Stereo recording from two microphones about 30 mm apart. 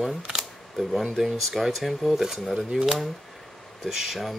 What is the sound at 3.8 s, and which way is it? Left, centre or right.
Speech, centre.